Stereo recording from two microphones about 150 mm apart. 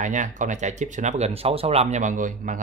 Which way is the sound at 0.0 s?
55° right (ahead or behind).